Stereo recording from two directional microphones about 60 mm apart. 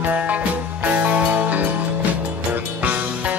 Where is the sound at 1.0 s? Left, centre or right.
Right.